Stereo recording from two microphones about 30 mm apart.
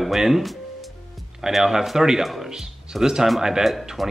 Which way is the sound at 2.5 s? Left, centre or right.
Centre.